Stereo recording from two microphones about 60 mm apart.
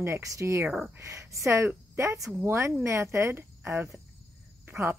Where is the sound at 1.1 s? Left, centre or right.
Right.